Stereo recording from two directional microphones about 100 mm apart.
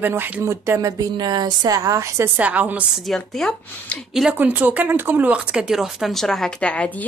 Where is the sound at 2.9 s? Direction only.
Centre (ahead or behind).